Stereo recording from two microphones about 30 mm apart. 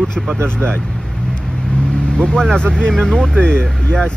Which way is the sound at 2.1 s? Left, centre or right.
Left.